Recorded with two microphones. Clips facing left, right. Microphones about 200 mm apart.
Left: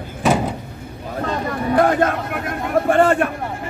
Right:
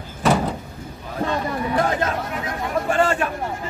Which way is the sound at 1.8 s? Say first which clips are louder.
Left 7 dB; 55° left (ahead or behind).